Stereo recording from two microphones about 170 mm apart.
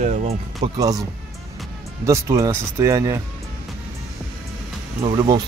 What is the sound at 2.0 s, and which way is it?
Speech, 20° right (ahead or behind).